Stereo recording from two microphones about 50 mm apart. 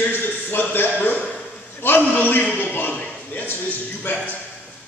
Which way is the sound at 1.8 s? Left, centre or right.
Left.